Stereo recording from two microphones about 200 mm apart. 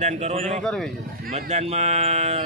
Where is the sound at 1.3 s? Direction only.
35° right (ahead or behind).